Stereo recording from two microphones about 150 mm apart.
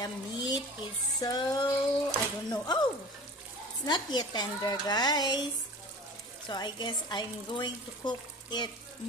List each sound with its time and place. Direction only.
0.0 s stir: 25° left (ahead or behind)
1.2 s speech: 25° left (ahead or behind)
3.8 s speech: 30° left (ahead or behind)
6.5 s speech: 30° left (ahead or behind)